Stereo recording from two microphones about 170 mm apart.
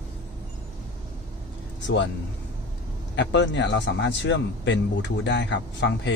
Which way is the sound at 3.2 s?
90° left.